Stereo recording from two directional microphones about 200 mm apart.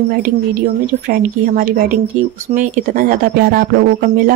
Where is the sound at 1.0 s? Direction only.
45° right (ahead or behind).